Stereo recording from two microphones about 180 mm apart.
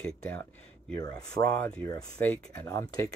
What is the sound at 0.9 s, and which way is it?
Speech, 20° left (ahead or behind).